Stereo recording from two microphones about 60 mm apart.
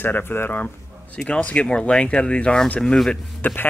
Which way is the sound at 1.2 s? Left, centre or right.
Centre.